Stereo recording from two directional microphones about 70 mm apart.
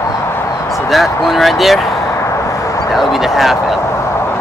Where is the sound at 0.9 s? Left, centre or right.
Centre.